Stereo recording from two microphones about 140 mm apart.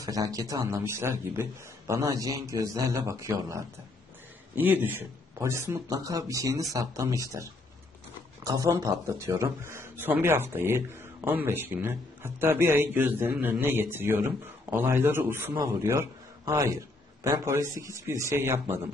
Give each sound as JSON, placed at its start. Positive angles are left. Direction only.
{"t": 0.0, "sound": "a man's voice", "side_deg": -25}
{"t": 8.5, "sound": "a man's voice", "side_deg": -25}